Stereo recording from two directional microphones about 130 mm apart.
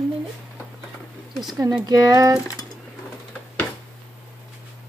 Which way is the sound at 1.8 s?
30° right (ahead or behind).